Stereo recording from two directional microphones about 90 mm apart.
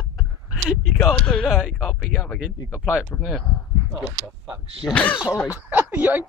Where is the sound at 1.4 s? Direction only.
Centre (ahead or behind).